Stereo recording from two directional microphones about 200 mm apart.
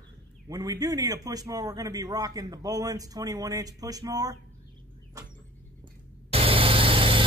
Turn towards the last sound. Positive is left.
turn(degrees=-25)  # may be behind; listen again after turning